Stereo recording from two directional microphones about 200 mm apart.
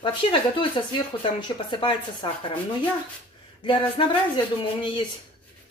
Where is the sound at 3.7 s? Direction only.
25° left (ahead or behind).